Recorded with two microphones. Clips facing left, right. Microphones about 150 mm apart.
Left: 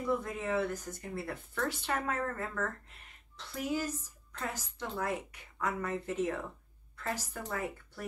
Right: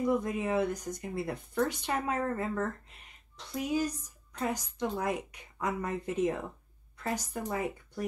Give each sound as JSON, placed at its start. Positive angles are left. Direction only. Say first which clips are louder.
{"t": 0.0, "sound": "a woman's voice", "louder": "right 4 dB", "side_deg": -15}